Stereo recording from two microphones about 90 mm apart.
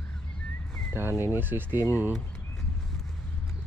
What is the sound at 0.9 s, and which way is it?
Speech, 25° right (ahead or behind).